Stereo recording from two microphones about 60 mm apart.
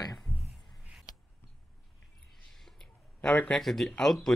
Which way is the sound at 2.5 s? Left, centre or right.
Centre.